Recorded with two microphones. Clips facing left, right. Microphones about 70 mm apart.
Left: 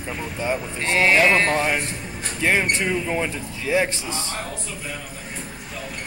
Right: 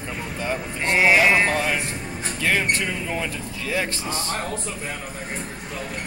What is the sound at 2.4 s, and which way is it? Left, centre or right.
Speech, centre.